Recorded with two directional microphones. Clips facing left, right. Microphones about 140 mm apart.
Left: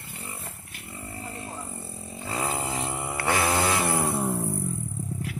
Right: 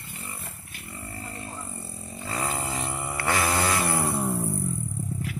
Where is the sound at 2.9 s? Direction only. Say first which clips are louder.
Left 1 dB; 20° left (ahead or behind).